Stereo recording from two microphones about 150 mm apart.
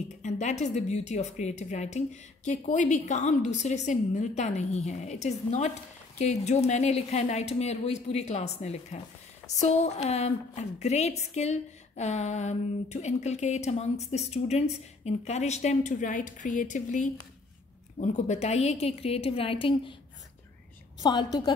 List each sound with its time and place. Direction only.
0.2 s a woman's voice: 50° left (ahead or behind); by 20.0 s 35° left (ahead or behind)
21.0 s a woman's voice: 30° left (ahead or behind)